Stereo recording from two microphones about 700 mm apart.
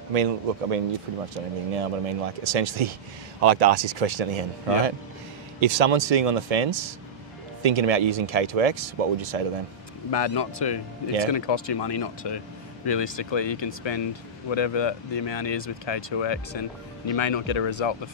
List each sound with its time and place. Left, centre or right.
0.1 s speech: right
10.1 s speech: left